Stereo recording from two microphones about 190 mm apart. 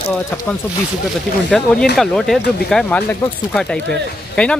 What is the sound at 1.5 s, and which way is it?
Speech, centre (ahead or behind).